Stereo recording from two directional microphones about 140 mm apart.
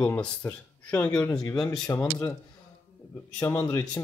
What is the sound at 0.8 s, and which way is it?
Speech, 10° left (ahead or behind).